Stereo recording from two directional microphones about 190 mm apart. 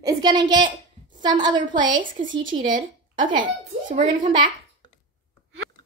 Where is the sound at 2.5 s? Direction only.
30° right (ahead or behind).